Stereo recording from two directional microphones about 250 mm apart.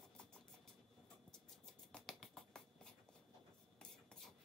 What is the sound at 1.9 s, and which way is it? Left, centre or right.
Finger snapping, centre.